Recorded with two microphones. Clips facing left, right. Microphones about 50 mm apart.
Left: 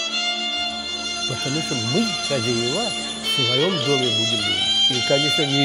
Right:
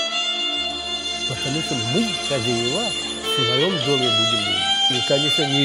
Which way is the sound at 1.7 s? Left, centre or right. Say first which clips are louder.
Even; centre.